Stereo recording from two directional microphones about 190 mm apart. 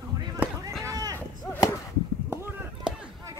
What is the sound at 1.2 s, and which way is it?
Artillery fire, 15° left (ahead or behind).